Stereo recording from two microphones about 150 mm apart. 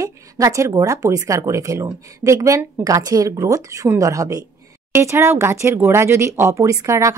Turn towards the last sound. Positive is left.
turn(degrees=-20)  # may be behind; listen again after turning